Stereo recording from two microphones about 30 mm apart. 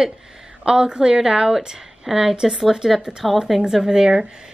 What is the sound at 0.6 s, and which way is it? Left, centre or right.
A woman's voice, right.